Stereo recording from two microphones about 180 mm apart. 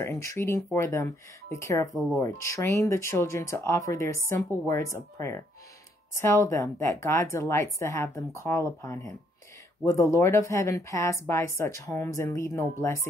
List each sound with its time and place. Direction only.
0.0 s a woman's voice: 15° left (ahead or behind)
10.1 s a woman's voice: 15° left (ahead or behind)